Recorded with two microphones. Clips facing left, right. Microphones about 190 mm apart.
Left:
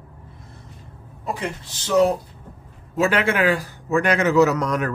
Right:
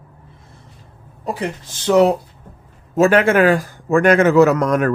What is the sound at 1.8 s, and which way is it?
Speech, 70° right (ahead or behind).